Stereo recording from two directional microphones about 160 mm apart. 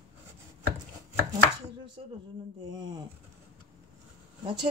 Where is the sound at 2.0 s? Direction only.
35° right (ahead or behind).